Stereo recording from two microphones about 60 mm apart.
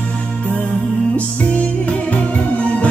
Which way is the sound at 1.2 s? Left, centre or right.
Left.